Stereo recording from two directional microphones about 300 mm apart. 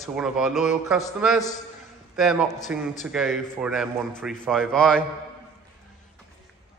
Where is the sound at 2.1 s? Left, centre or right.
Centre.